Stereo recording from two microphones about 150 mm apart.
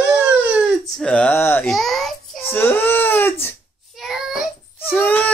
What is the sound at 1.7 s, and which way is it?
Babbling, centre (ahead or behind).